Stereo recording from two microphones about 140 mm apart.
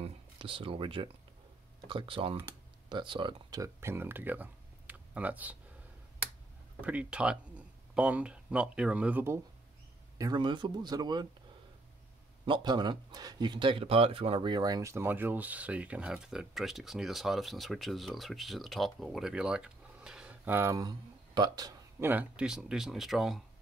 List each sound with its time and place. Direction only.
0.0 s a sound: 40° right (ahead or behind)
1.9 s speech: 40° right (ahead or behind); by 5.6 s 10° right (ahead or behind)
6.8 s speech: 10° right (ahead or behind)
10.1 s speech: 30° right (ahead or behind)
12.4 s speech: 35° right (ahead or behind)
22.0 s speech: 10° right (ahead or behind)